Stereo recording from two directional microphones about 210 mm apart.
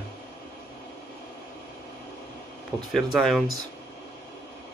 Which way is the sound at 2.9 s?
Centre (ahead or behind).